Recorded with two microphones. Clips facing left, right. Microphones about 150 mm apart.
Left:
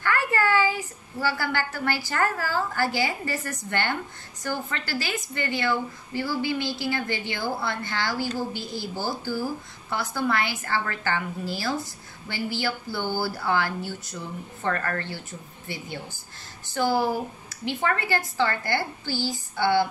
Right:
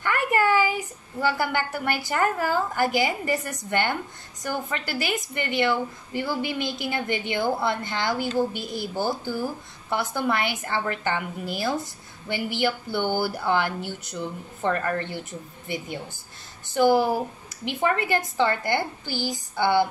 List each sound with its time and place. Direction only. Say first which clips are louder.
0.0 s a woman's voice: right 2 dB; 15° right (ahead or behind)
9.8 s a woman's voice: right 2 dB; 20° right (ahead or behind)